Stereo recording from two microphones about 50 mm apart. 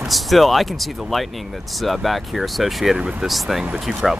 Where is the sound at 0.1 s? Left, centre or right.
Centre.